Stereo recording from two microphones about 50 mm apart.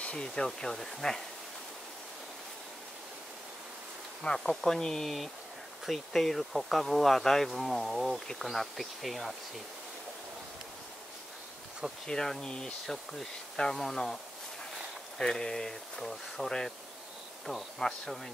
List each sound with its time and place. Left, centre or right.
0.0 s a sound: left
0.3 s speech: centre
4.2 s speech: centre
12.1 s speech: centre
12.8 s speech: centre